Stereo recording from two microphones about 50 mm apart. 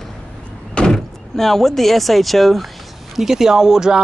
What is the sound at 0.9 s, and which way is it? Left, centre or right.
Speech, centre.